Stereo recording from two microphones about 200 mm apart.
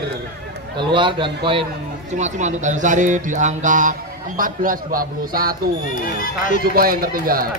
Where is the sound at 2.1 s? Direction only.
35° right (ahead or behind).